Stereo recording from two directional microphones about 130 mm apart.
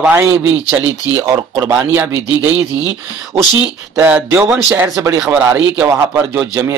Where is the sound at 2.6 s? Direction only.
30° left (ahead or behind).